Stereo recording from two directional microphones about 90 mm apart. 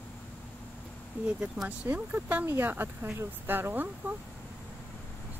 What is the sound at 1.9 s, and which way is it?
Speech, 20° right (ahead or behind).